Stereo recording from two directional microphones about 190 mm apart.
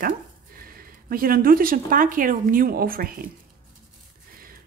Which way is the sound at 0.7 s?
50° right (ahead or behind).